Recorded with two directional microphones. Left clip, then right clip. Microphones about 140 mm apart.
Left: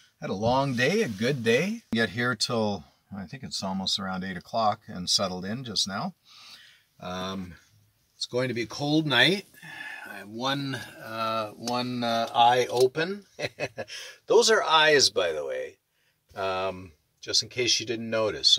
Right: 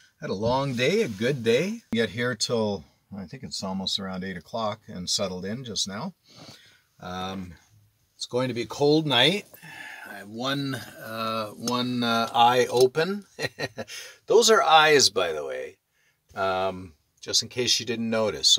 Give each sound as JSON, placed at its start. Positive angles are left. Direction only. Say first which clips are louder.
{"t": 0.2, "sound": "speech", "louder": "even", "side_deg": 0}
{"t": 7.0, "sound": "speech", "louder": "even", "side_deg": -5}
{"t": 8.2, "sound": "speech", "louder": "right 1 dB", "side_deg": -25}
{"t": 11.1, "sound": "speech", "louder": "even", "side_deg": -40}